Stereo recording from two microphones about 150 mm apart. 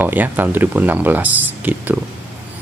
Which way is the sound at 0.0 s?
10° right (ahead or behind).